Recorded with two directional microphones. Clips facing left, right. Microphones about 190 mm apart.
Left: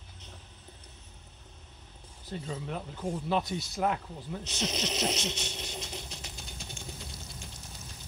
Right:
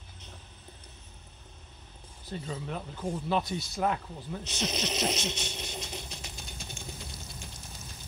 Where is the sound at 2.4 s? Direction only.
25° left (ahead or behind).